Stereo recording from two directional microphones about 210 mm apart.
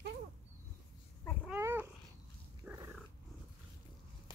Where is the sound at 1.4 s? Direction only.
10° right (ahead or behind).